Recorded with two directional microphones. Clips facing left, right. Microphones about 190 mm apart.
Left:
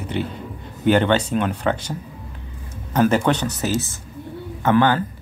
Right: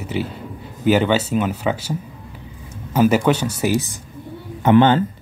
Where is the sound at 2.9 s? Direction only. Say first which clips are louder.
Right 2 dB; 10° right (ahead or behind).